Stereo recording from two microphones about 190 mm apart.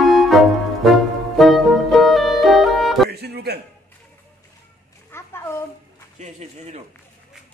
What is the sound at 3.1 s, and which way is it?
Music, 60° right (ahead or behind).